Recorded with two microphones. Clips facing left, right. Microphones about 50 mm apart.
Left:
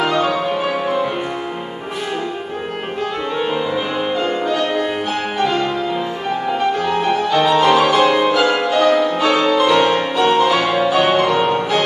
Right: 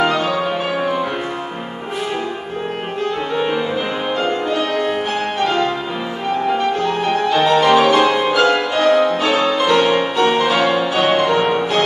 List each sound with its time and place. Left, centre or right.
3.3 s music: centre
7.1 s music: centre
8.7 s music: centre
9.2 s music: centre